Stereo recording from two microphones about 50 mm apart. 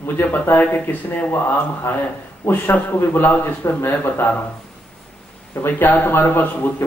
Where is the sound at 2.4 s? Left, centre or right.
Left.